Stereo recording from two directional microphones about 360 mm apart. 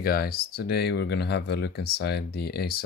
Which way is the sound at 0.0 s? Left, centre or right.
Left.